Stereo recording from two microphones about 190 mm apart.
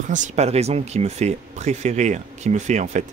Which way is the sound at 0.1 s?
40° right (ahead or behind).